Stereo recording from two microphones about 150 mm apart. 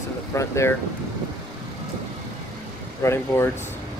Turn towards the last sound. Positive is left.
turn(degrees=15)  # may be behind; listen again after turning